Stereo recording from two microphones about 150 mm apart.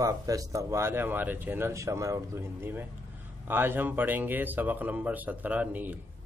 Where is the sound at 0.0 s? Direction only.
25° right (ahead or behind).